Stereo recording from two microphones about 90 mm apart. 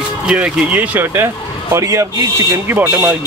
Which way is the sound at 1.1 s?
30° right (ahead or behind).